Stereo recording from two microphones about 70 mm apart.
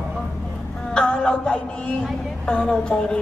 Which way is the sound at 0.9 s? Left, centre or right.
Centre.